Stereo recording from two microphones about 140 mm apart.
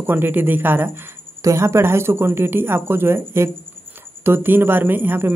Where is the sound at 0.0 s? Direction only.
15° right (ahead or behind).